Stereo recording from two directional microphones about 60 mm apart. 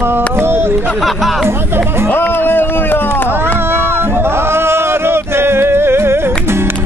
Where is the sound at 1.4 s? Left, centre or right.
Right.